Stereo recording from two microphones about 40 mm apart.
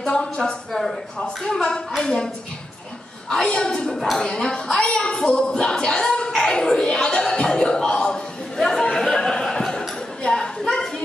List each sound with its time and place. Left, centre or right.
0.0 s a woman's voice: centre
3.4 s a woman's voice: centre
4.7 s speech: left
8.5 s chatter: centre
8.9 s a sound: centre